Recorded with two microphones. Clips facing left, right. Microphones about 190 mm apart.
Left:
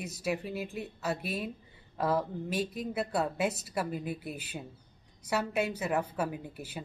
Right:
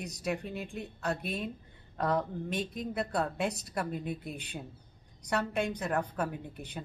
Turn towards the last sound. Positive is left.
turn(degrees=5)  # may be behind; listen again after turning